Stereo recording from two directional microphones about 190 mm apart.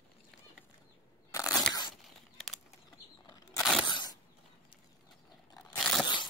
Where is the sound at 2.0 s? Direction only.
Centre (ahead or behind).